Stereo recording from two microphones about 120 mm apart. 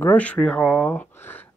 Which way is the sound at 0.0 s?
15° left (ahead or behind).